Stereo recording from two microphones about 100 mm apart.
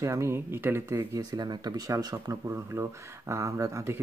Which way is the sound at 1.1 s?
45° right (ahead or behind).